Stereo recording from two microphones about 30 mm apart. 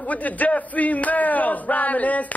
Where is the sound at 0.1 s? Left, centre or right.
Left.